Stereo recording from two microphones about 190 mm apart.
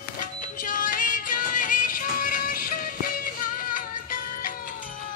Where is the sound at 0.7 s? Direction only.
45° left (ahead or behind).